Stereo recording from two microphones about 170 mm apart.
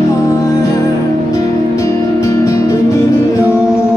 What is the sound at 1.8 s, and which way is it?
Music, 20° left (ahead or behind).